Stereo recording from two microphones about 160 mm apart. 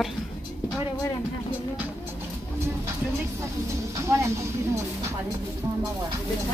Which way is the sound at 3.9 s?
15° right (ahead or behind).